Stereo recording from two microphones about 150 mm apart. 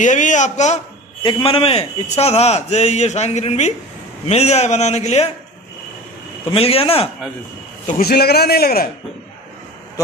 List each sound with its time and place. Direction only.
0.0 s a man's voice: 55° left (ahead or behind)
1.2 s a man's voice: 35° left (ahead or behind)
6.5 s a man's voice: 40° left (ahead or behind)
8.0 s a man's voice: 90° left